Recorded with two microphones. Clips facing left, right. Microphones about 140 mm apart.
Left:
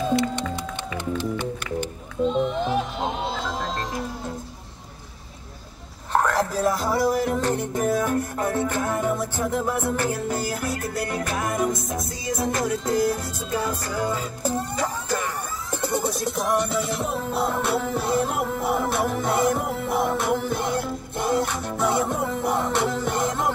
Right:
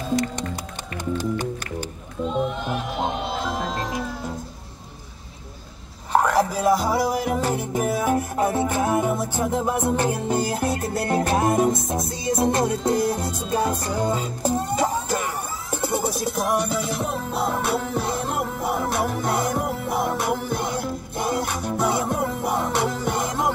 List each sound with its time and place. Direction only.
1.1 s music: 40° right (ahead or behind)
6.1 s music: 5° right (ahead or behind)